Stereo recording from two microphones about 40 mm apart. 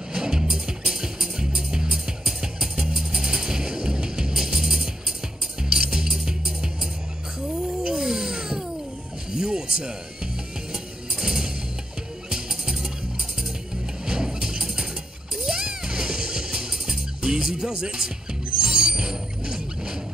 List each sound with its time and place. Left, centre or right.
0.1 s music: centre
7.4 s a sound: centre
9.3 s music: centre
14.0 s music: centre
17.2 s speech: centre
18.6 s music: centre